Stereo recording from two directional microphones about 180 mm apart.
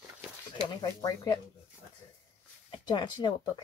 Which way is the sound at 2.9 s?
25° left (ahead or behind).